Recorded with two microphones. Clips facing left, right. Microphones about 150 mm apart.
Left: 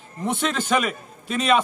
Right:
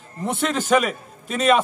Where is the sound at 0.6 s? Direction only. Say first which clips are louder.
Right 5 dB; 45° right (ahead or behind).